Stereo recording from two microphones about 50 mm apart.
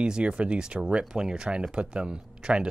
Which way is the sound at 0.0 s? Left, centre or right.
Right.